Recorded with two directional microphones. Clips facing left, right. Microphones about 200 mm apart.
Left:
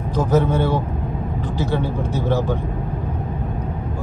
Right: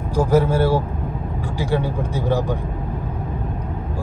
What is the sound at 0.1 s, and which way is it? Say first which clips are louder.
Speech: right 1 dB; 10° right (ahead or behind).